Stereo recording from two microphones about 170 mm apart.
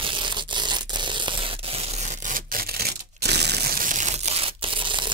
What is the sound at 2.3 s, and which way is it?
Tearing, 60° right (ahead or behind).